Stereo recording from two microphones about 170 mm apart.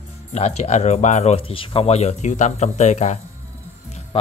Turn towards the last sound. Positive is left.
turn(degrees=35)  # may be behind; listen again after turning